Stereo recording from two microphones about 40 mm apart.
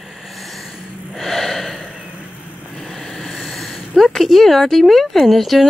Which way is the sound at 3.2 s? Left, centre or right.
Centre.